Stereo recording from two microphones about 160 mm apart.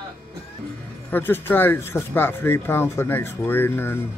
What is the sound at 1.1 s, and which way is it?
Speech, 15° left (ahead or behind).